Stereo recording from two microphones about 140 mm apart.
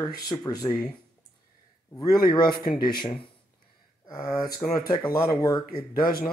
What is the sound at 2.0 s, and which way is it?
Speech, 30° left (ahead or behind).